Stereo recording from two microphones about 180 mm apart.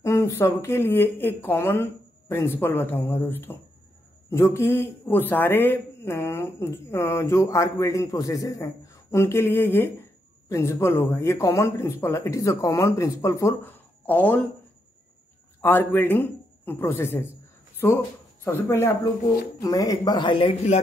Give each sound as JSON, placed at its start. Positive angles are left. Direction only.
{"t": 0.0, "sound": "speech", "side_deg": 15}
{"t": 15.6, "sound": "a man's voice", "side_deg": 10}